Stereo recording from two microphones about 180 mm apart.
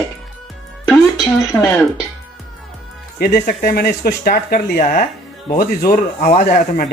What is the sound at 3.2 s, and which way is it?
Speech, 55° left (ahead or behind).